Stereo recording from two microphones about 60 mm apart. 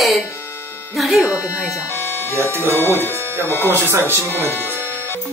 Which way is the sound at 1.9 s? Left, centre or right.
Left.